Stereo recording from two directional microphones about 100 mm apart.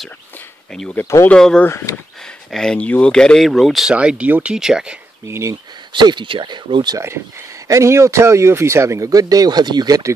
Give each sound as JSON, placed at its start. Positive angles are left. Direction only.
{"t": 0.7, "sound": "speech", "side_deg": 10}
{"t": 1.7, "sound": "speech", "side_deg": 25}
{"t": 2.5, "sound": "speech", "side_deg": 5}
{"t": 3.9, "sound": "speech", "side_deg": -10}
{"t": 5.2, "sound": "speech", "side_deg": -30}
{"t": 5.9, "sound": "speech", "side_deg": -50}
{"t": 7.6, "sound": "speech", "side_deg": -30}